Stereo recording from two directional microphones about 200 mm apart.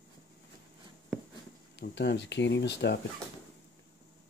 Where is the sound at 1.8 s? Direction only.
60° left (ahead or behind).